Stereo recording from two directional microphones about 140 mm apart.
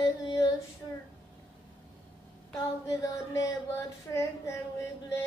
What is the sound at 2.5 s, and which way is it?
Female singing, 25° left (ahead or behind).